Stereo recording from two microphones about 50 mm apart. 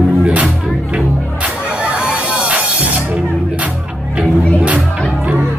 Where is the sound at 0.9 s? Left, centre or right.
Right.